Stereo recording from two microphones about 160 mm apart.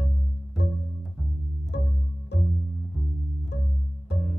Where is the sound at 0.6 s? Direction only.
90° left.